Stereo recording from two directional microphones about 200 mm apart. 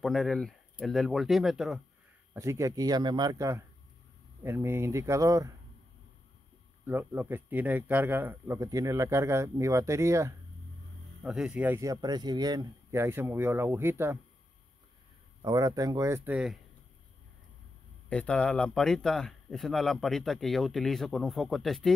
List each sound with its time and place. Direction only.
0.0 s speech: centre (ahead or behind)
2.3 s speech: 15° right (ahead or behind)
6.9 s speech: 10° right (ahead or behind)
11.2 s speech: 5° right (ahead or behind)
15.4 s speech: 20° right (ahead or behind)
18.1 s speech: 5° left (ahead or behind)